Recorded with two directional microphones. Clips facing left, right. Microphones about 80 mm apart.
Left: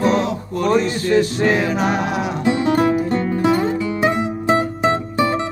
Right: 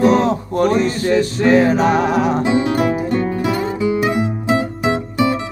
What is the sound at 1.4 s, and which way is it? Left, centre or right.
Music, right.